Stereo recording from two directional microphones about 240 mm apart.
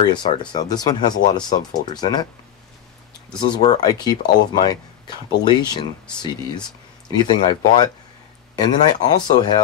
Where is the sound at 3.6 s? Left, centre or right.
Centre.